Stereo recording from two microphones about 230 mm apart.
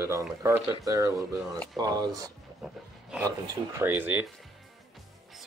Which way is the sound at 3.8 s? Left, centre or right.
Centre.